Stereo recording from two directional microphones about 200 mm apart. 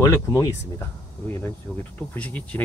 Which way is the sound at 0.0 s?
15° left (ahead or behind).